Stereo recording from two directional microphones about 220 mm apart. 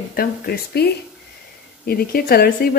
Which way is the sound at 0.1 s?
45° left (ahead or behind).